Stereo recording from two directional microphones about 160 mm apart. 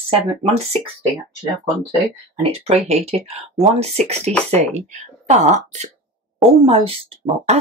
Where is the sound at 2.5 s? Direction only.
40° right (ahead or behind).